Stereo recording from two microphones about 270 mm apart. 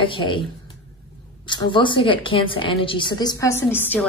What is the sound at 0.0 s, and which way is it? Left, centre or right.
A woman's voice, centre.